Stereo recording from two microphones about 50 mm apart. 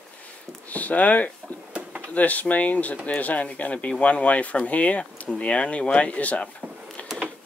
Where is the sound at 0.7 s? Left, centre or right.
Left.